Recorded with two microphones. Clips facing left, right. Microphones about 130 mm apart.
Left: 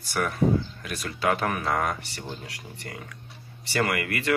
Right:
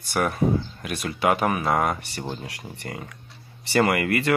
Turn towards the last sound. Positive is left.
turn(degrees=-30)  # may be behind; listen again after turning